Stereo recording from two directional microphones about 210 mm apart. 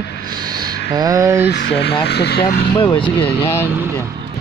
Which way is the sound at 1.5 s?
55° left (ahead or behind).